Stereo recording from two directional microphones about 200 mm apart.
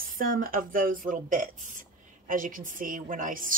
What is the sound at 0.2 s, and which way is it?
A woman's voice, 45° right (ahead or behind).